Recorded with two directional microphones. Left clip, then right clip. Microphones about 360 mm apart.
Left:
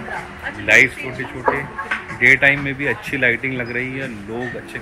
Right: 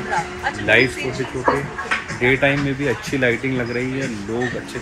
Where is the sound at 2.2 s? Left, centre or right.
Centre.